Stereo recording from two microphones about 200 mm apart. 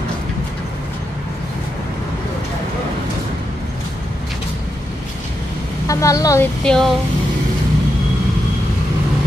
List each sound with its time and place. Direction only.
5.9 s a woman's voice: 15° left (ahead or behind)
6.6 s speech: centre (ahead or behind)